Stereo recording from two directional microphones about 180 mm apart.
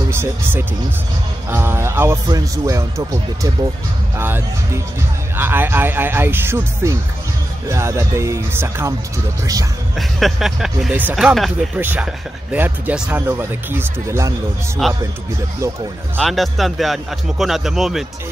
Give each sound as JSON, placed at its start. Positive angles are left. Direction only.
{"t": 0.1, "sound": "speech", "side_deg": -15}
{"t": 4.2, "sound": "speech", "side_deg": -10}
{"t": 9.9, "sound": "speech", "side_deg": 0}
{"t": 14.8, "sound": "speech", "side_deg": 0}
{"t": 16.2, "sound": "speech", "side_deg": 0}